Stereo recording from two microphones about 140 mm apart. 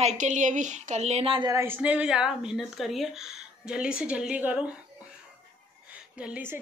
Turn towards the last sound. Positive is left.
turn(degrees=-10)  # may be behind; listen again after turning